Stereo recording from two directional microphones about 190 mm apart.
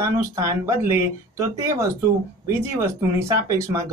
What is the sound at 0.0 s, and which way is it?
Speech, 15° right (ahead or behind).